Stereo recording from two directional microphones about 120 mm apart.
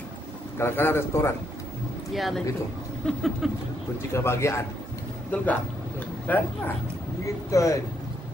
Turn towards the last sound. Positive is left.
turn(degrees=25)  # may be behind; listen again after turning